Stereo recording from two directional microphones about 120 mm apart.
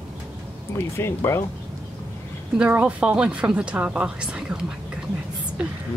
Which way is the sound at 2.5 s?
10° right (ahead or behind).